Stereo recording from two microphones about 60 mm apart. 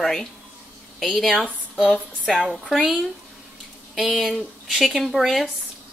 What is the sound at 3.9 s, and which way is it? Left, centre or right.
A woman's voice, centre.